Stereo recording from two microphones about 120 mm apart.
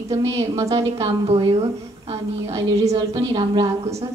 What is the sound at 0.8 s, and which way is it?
Speech, 55° right (ahead or behind).